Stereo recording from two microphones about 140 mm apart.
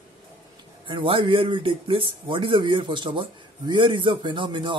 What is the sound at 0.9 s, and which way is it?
Speech, 40° right (ahead or behind).